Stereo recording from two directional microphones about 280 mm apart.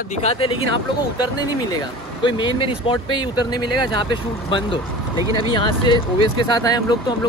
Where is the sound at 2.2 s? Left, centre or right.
Centre.